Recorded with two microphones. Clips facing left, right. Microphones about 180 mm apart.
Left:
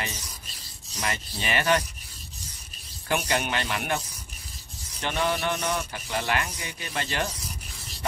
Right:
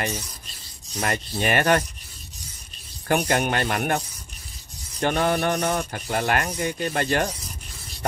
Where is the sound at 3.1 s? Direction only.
45° right (ahead or behind).